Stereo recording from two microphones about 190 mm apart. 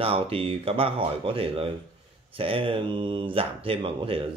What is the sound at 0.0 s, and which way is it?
Speech, 30° right (ahead or behind).